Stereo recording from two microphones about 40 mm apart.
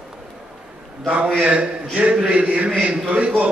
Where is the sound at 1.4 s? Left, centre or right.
Right.